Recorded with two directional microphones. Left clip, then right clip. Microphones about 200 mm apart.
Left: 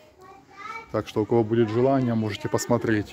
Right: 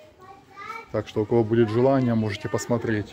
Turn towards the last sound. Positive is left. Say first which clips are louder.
# left 2 dB
turn(degrees=30)  # may be behind; listen again after turning